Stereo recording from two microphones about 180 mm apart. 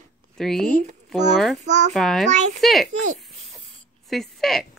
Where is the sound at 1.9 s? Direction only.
Centre (ahead or behind).